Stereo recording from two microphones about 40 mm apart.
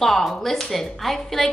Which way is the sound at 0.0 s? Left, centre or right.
Centre.